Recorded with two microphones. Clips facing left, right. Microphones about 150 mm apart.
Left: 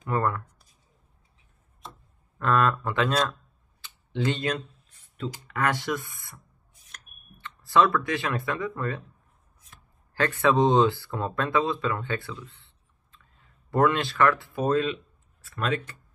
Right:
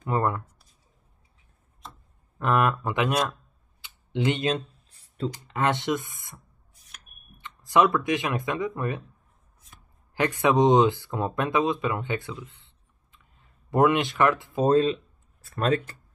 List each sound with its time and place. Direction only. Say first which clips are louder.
0.0 s speech: right 1 dB; 20° right (ahead or behind)
2.3 s speech: even; 20° right (ahead or behind)
3.8 s computer keyboard: right 2 dB; 15° right (ahead or behind); by 5.3 s 35° right (ahead or behind)
5.5 s speech: right 2 dB; 20° right (ahead or behind)
10.1 s speech: right 1 dB; 15° right (ahead or behind); by 15.8 s 40° right (ahead or behind)